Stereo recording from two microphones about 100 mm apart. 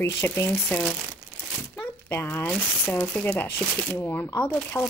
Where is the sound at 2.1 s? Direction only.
25° left (ahead or behind).